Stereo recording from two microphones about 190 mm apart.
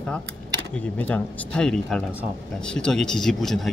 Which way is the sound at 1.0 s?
10° left (ahead or behind).